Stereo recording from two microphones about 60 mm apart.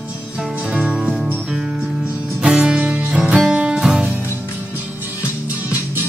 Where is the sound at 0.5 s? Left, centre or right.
Right.